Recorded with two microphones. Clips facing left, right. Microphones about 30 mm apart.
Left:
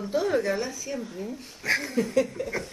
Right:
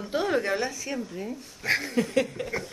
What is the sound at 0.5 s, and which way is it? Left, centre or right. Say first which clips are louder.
Speech: right 1 dB; right.